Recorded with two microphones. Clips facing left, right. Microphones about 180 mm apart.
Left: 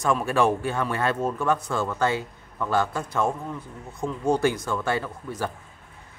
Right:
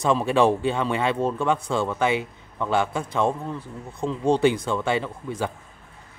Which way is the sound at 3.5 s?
30° right (ahead or behind).